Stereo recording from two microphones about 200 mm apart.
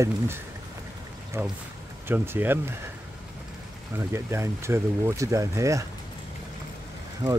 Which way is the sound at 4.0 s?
15° right (ahead or behind).